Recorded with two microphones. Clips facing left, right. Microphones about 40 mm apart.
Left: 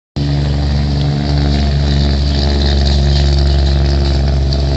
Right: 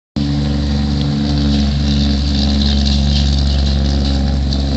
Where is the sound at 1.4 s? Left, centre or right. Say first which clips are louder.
Right 1 dB; left.